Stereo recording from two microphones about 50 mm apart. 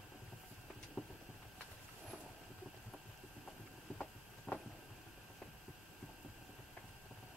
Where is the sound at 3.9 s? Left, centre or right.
Centre.